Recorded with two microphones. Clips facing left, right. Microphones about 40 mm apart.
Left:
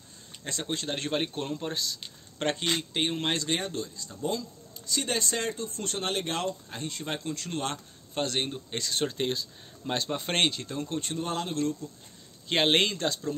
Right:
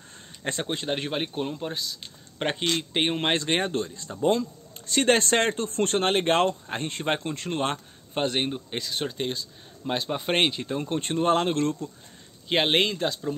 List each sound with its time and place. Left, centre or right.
0.4 s a man's voice: right; by 2.0 s centre
2.3 s a man's voice: centre
2.8 s speech: right; by 9.5 s centre
9.8 s speech: centre; by 11.9 s right
12.4 s a man's voice: centre